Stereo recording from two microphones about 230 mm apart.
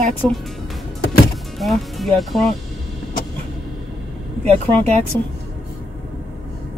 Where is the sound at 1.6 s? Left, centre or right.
Centre.